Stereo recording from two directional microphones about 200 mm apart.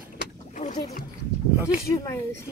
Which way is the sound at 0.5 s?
35° left (ahead or behind).